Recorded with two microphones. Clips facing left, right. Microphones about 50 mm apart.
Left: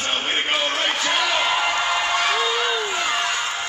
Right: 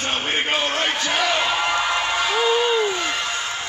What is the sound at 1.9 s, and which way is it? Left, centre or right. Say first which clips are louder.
Music: even; centre.